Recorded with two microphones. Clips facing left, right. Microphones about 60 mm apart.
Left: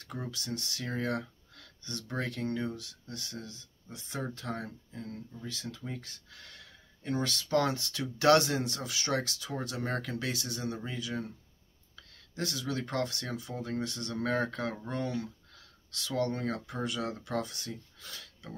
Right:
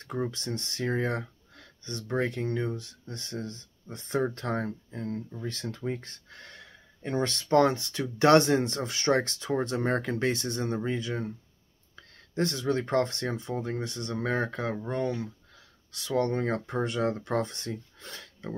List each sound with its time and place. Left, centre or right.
0.0 s speech: right